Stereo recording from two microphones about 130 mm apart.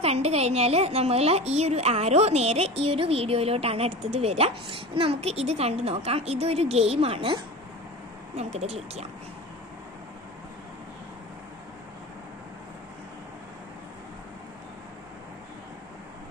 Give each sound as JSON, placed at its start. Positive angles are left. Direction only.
{"t": 0.0, "sound": "a woman's voice", "side_deg": -50}
{"t": 8.4, "sound": "speech", "side_deg": -55}